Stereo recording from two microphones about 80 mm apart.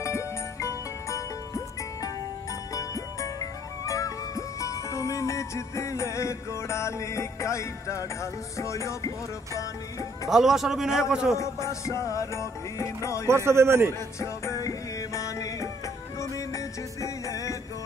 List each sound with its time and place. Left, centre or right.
0.0 s music: left
2.7 s music: left
10.3 s a man's voice: centre
11.3 s music: left
13.3 s a man's voice: right
14.2 s music: left